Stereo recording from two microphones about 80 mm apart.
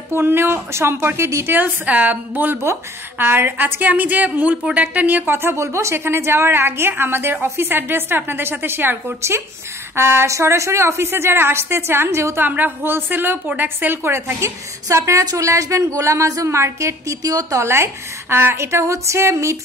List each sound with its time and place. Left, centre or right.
0.1 s a woman's voice: right
12.4 s a woman's voice: right